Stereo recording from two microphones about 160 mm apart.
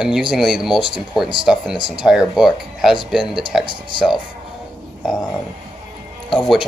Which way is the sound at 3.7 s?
30° right (ahead or behind).